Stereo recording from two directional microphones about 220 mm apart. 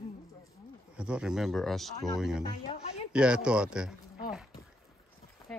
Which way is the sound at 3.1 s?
5° right (ahead or behind).